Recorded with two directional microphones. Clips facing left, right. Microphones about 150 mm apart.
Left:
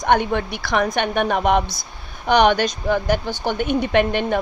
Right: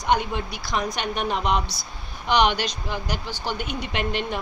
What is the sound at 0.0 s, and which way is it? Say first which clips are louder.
A woman's voice: left 5 dB; 55° left (ahead or behind).